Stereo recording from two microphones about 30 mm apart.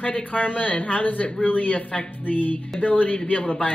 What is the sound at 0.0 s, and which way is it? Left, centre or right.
Speech, left.